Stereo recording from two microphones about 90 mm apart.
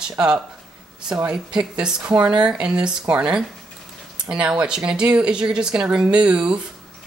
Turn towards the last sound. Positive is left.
turn(degrees=-10)  # may be behind; listen again after turning